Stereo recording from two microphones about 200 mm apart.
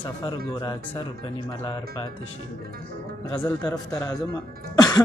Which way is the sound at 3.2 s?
20° left (ahead or behind).